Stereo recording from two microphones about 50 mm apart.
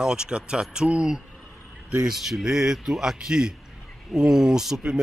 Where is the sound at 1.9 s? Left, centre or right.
Centre.